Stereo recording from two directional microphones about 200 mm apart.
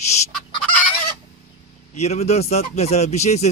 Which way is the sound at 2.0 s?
35° left (ahead or behind).